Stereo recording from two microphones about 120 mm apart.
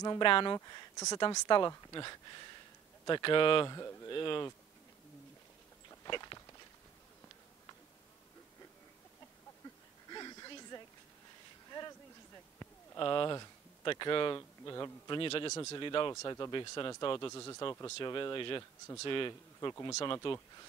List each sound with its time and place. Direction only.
0.2 s speech: 45° left (ahead or behind)
0.6 s speech: 30° left (ahead or behind)
3.6 s speech: 30° left (ahead or behind)
4.1 s speech: 40° left (ahead or behind)
6.0 s walk: 40° left (ahead or behind)
10.0 s a sound: 35° left (ahead or behind)
13.0 s speech: 40° left (ahead or behind)
14.6 s a man's voice: 30° left (ahead or behind)
15.0 s speech: 45° left (ahead or behind)
16.1 s speech: 30° left (ahead or behind)
17.3 s speech: 30° left (ahead or behind)
19.7 s speech: 25° left (ahead or behind)
20.2 s speech: 45° left (ahead or behind)